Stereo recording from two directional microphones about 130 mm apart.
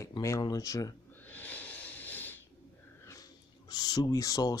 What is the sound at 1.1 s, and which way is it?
Snort, 15° left (ahead or behind).